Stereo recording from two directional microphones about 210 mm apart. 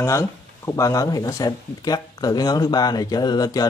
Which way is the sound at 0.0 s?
15° left (ahead or behind).